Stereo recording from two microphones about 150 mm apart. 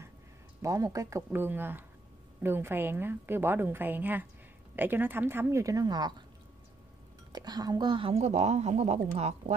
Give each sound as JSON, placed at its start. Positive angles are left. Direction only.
{"t": 0.6, "sound": "a woman's voice", "side_deg": -20}
{"t": 7.3, "sound": "a woman's voice", "side_deg": -25}